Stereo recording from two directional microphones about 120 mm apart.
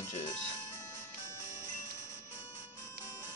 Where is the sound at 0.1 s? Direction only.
70° left (ahead or behind).